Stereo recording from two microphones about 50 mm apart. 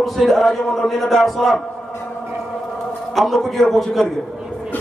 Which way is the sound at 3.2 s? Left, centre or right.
Centre.